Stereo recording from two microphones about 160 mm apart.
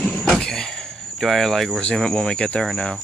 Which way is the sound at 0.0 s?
10° left (ahead or behind).